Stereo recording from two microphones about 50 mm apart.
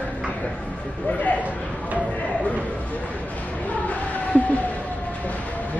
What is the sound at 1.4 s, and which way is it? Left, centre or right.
Speech, right.